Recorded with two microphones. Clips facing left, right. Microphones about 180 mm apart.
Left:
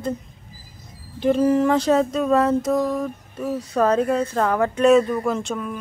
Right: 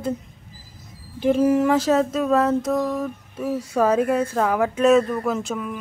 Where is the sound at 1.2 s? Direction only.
5° right (ahead or behind).